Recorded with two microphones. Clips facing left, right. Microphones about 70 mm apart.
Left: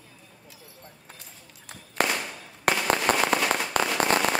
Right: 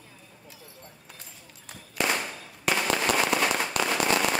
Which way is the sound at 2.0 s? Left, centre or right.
Left.